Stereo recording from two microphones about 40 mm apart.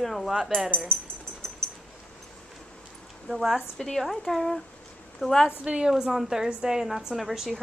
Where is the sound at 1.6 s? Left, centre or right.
Centre.